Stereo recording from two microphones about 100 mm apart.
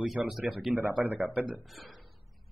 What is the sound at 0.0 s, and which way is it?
Speech, centre (ahead or behind).